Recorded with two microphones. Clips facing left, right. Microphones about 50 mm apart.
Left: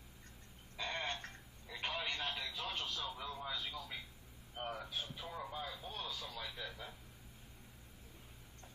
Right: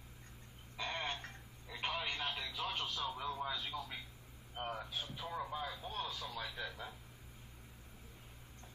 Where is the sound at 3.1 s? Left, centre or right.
Right.